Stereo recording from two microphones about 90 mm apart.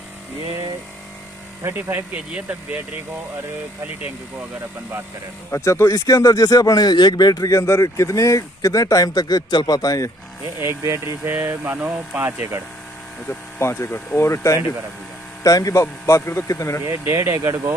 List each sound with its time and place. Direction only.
1.6 s speech: 25° right (ahead or behind)
5.5 s speech: 30° left (ahead or behind)
10.4 s speech: 35° right (ahead or behind)
13.6 s speech: 30° left (ahead or behind)
16.8 s speech: 30° right (ahead or behind)